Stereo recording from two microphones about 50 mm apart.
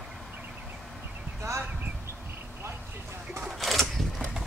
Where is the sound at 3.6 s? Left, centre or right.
Centre.